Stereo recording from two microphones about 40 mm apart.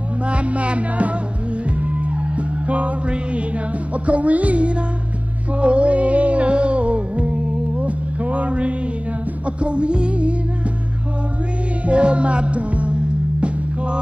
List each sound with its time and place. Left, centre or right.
0.3 s music: right
11.8 s music: right